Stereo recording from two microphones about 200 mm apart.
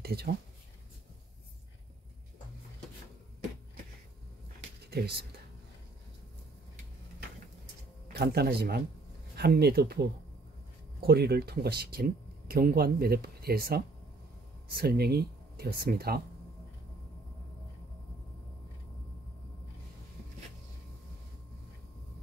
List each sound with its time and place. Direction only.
0.0 s speech: 50° right (ahead or behind)
4.9 s speech: 50° right (ahead or behind)
8.1 s speech: 55° right (ahead or behind)